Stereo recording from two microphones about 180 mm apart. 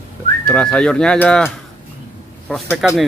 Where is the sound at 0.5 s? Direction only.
5° left (ahead or behind).